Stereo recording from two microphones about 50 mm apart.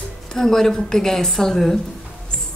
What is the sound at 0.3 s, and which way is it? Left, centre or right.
A woman's voice, centre.